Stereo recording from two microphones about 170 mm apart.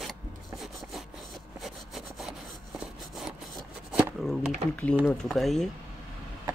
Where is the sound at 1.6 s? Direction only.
Centre (ahead or behind).